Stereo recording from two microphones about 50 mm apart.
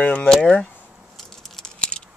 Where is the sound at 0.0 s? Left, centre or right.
Left.